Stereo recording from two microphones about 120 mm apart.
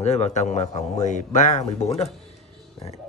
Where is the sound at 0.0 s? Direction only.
70° left (ahead or behind).